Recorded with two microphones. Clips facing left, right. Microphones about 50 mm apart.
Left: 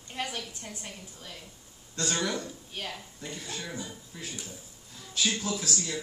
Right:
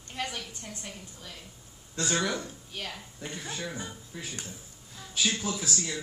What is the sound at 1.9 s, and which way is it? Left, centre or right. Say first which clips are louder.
Speech: right 1 dB; centre.